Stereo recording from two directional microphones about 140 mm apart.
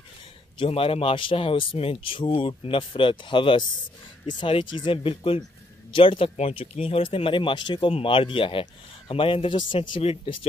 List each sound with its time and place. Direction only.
0.6 s speech: 40° left (ahead or behind)